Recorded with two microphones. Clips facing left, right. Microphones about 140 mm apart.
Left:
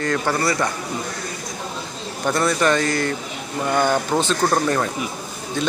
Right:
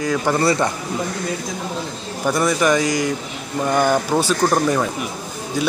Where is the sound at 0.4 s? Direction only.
25° right (ahead or behind).